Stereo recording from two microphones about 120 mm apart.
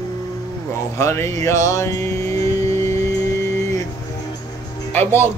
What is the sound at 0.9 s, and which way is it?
Music, 25° left (ahead or behind).